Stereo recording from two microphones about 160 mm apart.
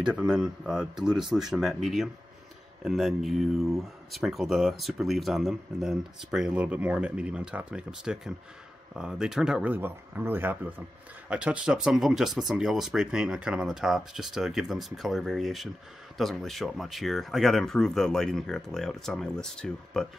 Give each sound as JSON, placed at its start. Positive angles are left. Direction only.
{"t": 0.0, "sound": "speech", "side_deg": -5}